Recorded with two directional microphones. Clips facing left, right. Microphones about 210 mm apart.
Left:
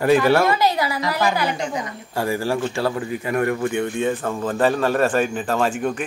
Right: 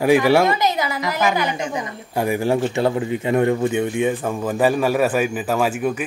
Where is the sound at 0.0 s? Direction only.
15° right (ahead or behind).